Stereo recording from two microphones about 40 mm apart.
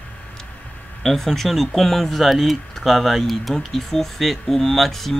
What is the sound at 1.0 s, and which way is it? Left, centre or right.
Speech, centre.